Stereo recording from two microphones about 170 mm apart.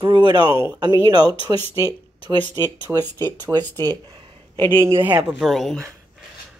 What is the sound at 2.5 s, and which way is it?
Speech, 20° right (ahead or behind).